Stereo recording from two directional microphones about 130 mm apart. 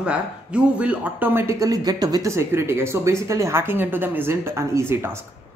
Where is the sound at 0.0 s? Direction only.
10° right (ahead or behind).